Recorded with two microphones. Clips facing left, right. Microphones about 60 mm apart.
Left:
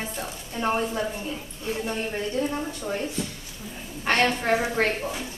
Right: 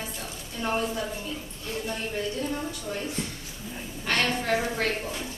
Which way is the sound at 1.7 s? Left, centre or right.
Centre.